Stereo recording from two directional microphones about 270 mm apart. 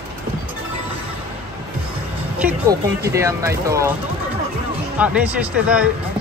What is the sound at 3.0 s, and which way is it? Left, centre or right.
Speech, centre.